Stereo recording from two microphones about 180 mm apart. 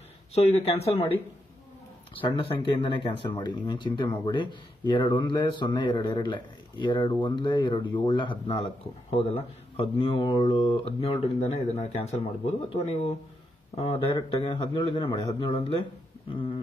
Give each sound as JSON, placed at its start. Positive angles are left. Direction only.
{"t": 0.3, "sound": "speech", "side_deg": 35}
{"t": 2.1, "sound": "speech", "side_deg": 30}